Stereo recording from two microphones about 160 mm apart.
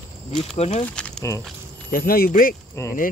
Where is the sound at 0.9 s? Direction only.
5° left (ahead or behind).